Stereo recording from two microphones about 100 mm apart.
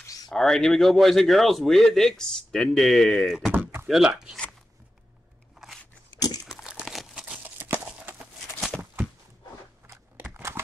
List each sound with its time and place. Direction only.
0.3 s speech: 5° left (ahead or behind)
3.8 s speech: 5° right (ahead or behind)
6.1 s crumpling: 40° left (ahead or behind)
6.4 s crumpling: 5° right (ahead or behind)
7.4 s horse: 20° right (ahead or behind)
8.5 s a sound: 5° left (ahead or behind)
9.8 s a sound: 25° right (ahead or behind)